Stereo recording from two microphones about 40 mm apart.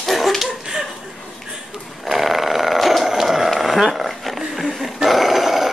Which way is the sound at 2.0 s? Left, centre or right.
Centre.